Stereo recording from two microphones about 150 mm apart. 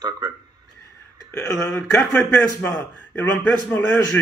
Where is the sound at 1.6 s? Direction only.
15° left (ahead or behind).